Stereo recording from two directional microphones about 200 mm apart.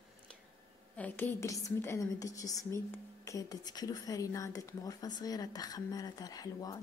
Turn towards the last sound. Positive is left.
turn(degrees=20)  # may be behind; listen again after turning